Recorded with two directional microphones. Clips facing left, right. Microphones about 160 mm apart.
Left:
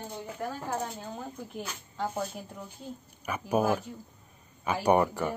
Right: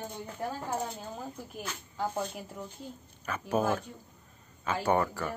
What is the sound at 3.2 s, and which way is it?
Speech, 10° left (ahead or behind).